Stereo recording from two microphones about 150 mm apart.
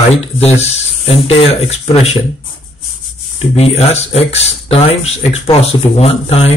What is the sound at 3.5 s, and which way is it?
Speech, 45° left (ahead or behind).